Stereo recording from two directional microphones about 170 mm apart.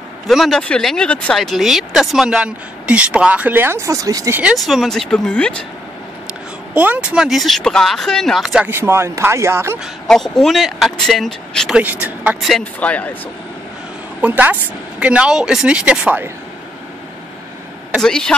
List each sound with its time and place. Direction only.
0.3 s speech: centre (ahead or behind); by 4.4 s 20° right (ahead or behind)
4.4 s speech: 5° right (ahead or behind)
6.7 s speech: 10° right (ahead or behind)
10.0 s speech: 5° left (ahead or behind)
11.8 s speech: 10° right (ahead or behind); by 13.1 s 10° left (ahead or behind)
14.2 s speech: 10° right (ahead or behind)
18.0 s speech: 5° left (ahead or behind)